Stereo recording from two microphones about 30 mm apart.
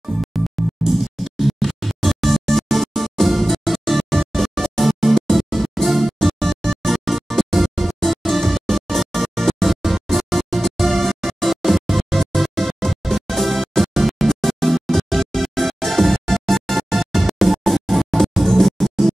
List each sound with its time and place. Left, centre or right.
0.8 s music: centre
6.1 s music: centre